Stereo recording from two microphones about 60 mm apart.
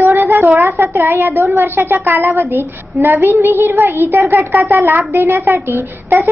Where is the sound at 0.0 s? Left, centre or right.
Right.